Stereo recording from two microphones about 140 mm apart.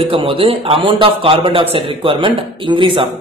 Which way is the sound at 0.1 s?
40° right (ahead or behind).